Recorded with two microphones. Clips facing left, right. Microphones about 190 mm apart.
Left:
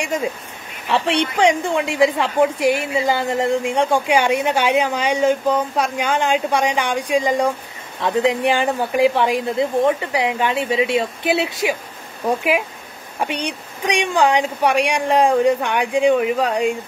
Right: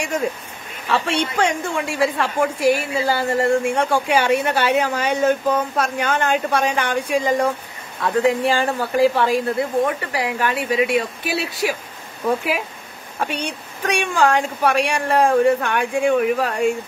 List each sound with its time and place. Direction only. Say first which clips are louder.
0.8 s a woman's voice: left 2 dB; 20° left (ahead or behind)
13.2 s a woman's voice: left 1 dB; 15° left (ahead or behind)